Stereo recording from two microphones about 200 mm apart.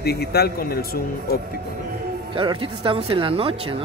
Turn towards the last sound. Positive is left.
turn(degrees=-25)  # may be behind; listen again after turning